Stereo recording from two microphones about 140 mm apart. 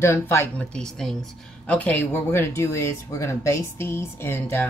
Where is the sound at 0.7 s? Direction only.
5° left (ahead or behind).